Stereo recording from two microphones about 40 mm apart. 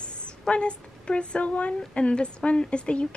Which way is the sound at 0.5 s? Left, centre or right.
Left.